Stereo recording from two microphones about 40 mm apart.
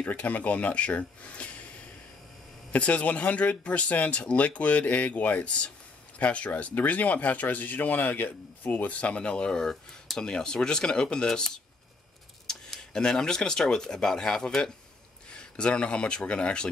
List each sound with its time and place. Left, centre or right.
0.0 s speech: left
2.8 s speech: left; by 11.6 s centre
12.5 s tick-tock: centre
12.9 s speech: centre